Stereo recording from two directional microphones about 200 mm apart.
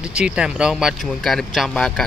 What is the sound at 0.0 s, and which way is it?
Speech, 5° right (ahead or behind).